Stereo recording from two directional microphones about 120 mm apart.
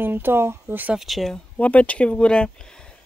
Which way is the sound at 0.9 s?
Centre (ahead or behind).